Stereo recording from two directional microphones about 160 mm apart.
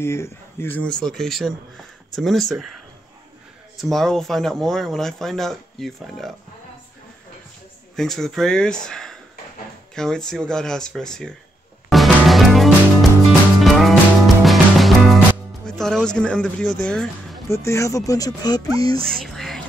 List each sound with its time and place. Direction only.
0.0 s speech: 15° left (ahead or behind)
3.7 s speech: centre (ahead or behind)
7.9 s speech: 5° left (ahead or behind)
11.9 s music: centre (ahead or behind)
17.5 s speech: 20° left (ahead or behind)
19.0 s whispering: centre (ahead or behind)